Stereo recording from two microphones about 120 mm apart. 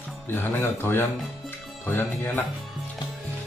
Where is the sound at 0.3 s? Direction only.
15° left (ahead or behind).